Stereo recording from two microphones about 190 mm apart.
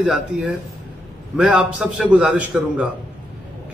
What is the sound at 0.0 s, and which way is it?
A man's voice, 5° right (ahead or behind).